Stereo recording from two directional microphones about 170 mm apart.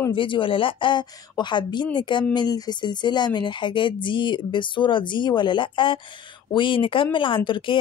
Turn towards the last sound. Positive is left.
turn(degrees=30)  # may be behind; listen again after turning